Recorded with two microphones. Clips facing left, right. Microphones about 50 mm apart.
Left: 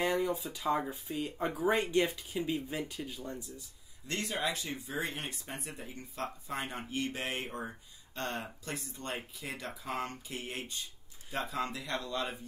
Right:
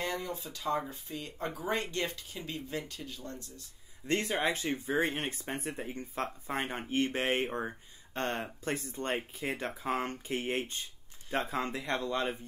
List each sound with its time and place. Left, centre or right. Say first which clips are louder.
0.0 s a sound: left 5 dB; centre
0.4 s speech: left 1 dB; centre
4.1 s speech: right 4 dB; right